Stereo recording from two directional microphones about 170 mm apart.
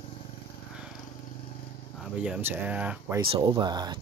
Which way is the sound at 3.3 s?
25° right (ahead or behind).